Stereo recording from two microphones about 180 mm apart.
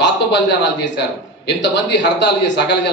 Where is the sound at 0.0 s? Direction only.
75° left (ahead or behind).